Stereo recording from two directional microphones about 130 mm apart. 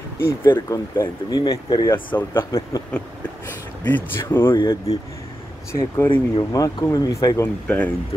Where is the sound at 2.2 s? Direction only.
20° left (ahead or behind).